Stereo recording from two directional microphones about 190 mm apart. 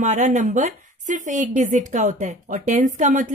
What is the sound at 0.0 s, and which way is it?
Speech, 40° right (ahead or behind).